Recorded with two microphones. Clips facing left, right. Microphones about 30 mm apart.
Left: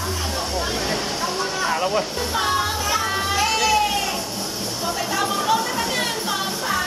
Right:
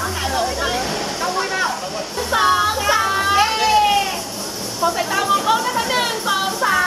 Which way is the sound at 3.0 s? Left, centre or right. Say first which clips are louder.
Right 5 dB; centre.